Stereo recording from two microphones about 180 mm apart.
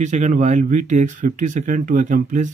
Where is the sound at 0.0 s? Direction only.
40° right (ahead or behind).